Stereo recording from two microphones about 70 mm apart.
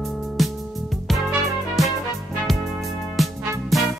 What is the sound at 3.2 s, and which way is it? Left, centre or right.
Music, centre.